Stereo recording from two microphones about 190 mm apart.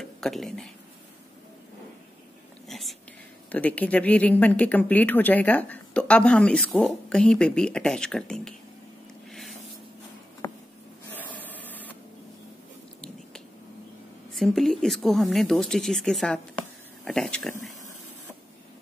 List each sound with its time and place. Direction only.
0.0 s speech: centre (ahead or behind)
2.7 s speech: centre (ahead or behind)
9.3 s spray: centre (ahead or behind)
10.4 s a sound: 20° left (ahead or behind)
11.1 s a sound: 10° left (ahead or behind)
14.3 s speech: centre (ahead or behind)